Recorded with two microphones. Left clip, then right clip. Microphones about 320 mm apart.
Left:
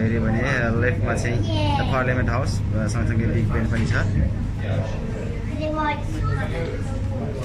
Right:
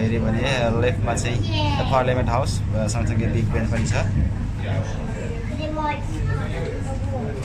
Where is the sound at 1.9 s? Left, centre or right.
Right.